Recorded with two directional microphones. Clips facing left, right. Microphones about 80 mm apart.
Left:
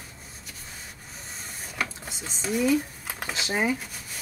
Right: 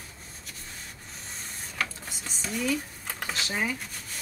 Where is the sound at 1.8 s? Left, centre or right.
Centre.